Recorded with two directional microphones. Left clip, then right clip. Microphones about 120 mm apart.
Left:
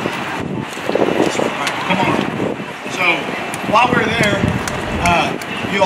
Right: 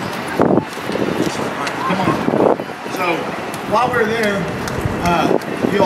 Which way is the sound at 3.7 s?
20° left (ahead or behind).